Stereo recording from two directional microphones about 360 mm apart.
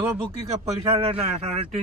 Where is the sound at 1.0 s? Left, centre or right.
Centre.